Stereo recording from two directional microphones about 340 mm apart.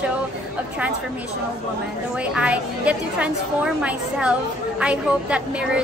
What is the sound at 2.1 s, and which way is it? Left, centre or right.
A woman's voice, centre.